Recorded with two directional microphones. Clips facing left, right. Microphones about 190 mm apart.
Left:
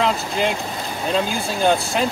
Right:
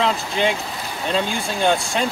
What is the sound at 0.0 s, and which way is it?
Speech, centre (ahead or behind).